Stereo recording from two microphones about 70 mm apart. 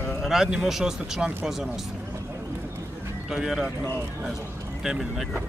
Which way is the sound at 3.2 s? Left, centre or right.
Centre.